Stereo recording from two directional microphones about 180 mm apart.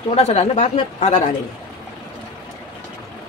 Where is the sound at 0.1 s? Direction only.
35° left (ahead or behind).